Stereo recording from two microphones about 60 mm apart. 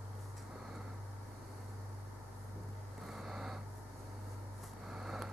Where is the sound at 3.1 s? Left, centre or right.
Centre.